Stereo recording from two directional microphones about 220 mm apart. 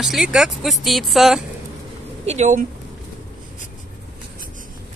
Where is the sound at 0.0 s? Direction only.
Centre (ahead or behind).